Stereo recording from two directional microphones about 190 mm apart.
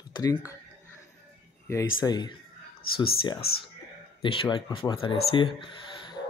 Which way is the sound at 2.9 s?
50° left (ahead or behind).